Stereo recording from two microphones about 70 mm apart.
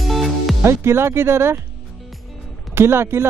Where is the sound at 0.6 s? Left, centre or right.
Right.